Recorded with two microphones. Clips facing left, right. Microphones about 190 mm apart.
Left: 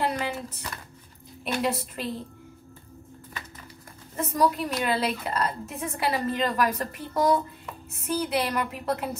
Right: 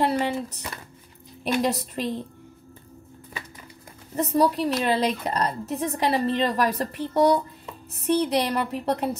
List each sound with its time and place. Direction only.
0.0 s a sound: 35° right (ahead or behind)
1.4 s a woman's voice: 35° right (ahead or behind)
4.2 s a woman's voice: 35° right (ahead or behind)